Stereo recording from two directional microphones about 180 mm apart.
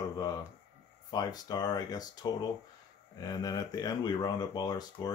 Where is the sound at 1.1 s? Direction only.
20° left (ahead or behind).